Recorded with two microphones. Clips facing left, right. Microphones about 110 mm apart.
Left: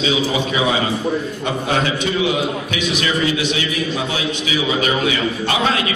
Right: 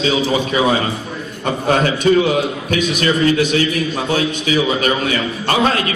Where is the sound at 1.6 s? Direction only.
45° right (ahead or behind).